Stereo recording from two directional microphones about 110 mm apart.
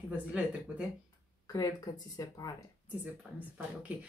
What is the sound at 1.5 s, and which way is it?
Speech, 35° left (ahead or behind).